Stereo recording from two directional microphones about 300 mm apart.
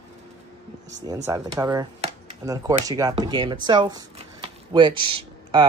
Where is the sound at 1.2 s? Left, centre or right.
Centre.